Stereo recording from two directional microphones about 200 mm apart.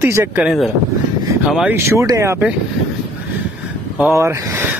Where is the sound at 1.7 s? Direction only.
15° right (ahead or behind).